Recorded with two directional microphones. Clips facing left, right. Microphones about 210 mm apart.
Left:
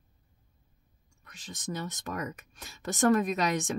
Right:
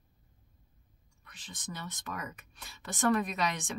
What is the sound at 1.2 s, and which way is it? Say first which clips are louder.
Speech: left 6 dB; 45° left (ahead or behind).